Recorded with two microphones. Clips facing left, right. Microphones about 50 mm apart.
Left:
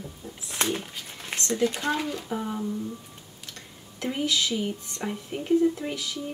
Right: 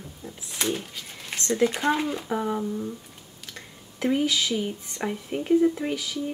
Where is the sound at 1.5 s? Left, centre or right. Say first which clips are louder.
Right 3 dB; centre.